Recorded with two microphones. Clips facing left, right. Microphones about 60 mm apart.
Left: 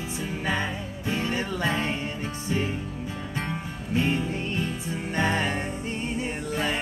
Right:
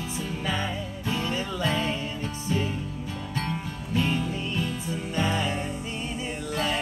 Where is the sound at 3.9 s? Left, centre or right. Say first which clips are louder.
Left 1 dB; left.